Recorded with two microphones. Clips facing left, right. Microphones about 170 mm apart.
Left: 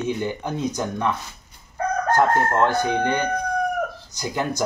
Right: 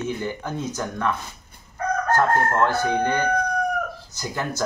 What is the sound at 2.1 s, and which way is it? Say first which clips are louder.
Chicken: left 2 dB; 15° left (ahead or behind).